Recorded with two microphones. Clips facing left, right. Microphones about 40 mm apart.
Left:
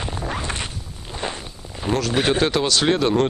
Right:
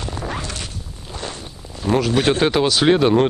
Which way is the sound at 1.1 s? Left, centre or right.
Left.